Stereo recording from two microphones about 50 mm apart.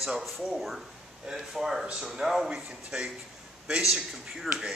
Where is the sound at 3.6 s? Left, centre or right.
Centre.